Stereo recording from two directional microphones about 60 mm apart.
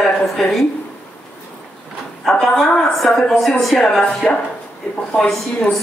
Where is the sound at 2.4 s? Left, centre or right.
Centre.